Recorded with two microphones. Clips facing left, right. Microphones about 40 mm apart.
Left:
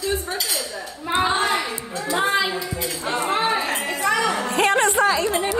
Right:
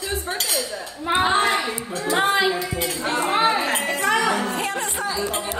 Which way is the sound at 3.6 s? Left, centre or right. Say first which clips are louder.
Right 1 dB; right.